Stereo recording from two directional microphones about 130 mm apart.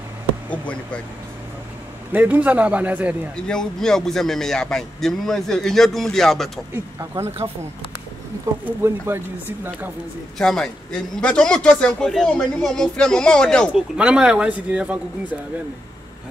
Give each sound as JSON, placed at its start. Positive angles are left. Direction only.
{"t": 0.5, "sound": "speech", "side_deg": 10}
{"t": 2.1, "sound": "speech", "side_deg": -15}
{"t": 3.3, "sound": "a man's voice", "side_deg": 5}
{"t": 6.7, "sound": "speech", "side_deg": -20}
{"t": 8.6, "sound": "speech", "side_deg": -20}
{"t": 10.4, "sound": "a man's voice", "side_deg": 5}
{"t": 13.9, "sound": "speech", "side_deg": -5}